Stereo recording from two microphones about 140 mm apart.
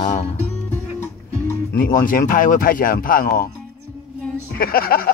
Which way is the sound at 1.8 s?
85° left.